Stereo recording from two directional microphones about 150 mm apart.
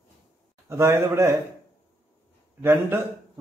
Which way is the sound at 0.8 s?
20° right (ahead or behind).